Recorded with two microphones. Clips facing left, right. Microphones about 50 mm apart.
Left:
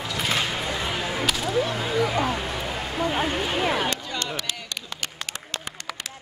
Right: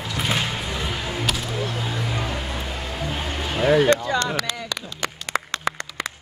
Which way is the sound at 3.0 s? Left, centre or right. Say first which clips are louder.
Left 6 dB; left.